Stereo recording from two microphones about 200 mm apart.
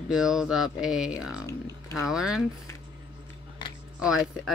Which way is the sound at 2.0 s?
5° right (ahead or behind).